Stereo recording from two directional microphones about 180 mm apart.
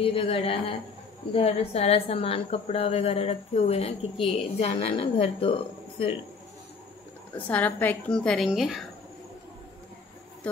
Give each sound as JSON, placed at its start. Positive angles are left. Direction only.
{"t": 0.0, "sound": "a woman's voice", "side_deg": 30}
{"t": 7.3, "sound": "a woman's voice", "side_deg": 10}
{"t": 10.4, "sound": "speech", "side_deg": 5}